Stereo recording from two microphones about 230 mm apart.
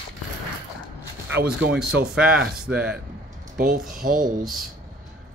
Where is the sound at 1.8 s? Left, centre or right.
Centre.